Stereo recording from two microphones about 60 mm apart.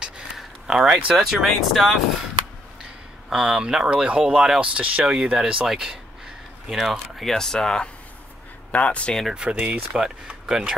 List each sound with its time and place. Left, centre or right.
0.0 s a sound: centre
1.1 s speech: centre
3.3 s speech: centre
4.6 s speech: right; by 9.1 s left
9.3 s speech: centre
9.9 s speech: centre